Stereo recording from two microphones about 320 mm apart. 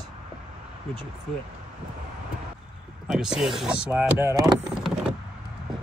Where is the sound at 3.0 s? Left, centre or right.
Centre.